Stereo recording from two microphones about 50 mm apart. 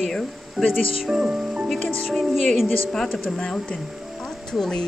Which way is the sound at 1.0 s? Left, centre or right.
Centre.